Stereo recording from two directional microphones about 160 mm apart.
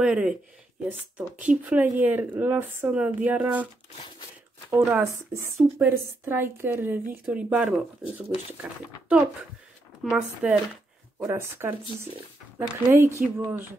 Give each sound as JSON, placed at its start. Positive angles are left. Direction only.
{"t": 0.0, "sound": "speech", "side_deg": -5}
{"t": 4.6, "sound": "speech", "side_deg": -10}
{"t": 10.0, "sound": "speech", "side_deg": -5}
{"t": 11.2, "sound": "speech", "side_deg": -15}